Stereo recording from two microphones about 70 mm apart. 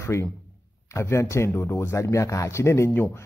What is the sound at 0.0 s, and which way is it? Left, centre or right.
A man's voice, left.